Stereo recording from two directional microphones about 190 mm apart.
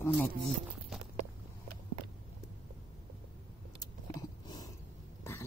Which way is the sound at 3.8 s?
20° left (ahead or behind).